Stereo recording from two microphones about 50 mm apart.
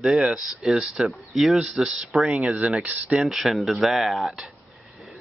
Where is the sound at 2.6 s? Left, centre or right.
Right.